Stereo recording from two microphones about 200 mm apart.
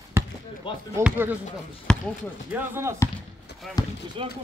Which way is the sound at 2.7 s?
15° right (ahead or behind).